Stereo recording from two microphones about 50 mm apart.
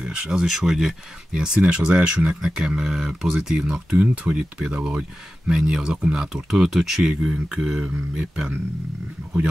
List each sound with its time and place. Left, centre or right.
0.0 s speech: centre
3.9 s speech: right